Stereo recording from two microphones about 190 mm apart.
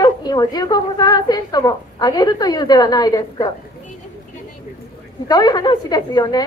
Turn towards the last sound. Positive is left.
turn(degrees=20)  # may be behind; listen again after turning